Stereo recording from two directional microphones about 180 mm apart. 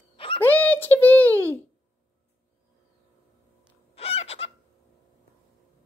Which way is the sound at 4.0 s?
35° left (ahead or behind).